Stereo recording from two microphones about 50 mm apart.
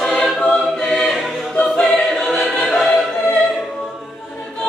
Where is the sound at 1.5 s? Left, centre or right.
Centre.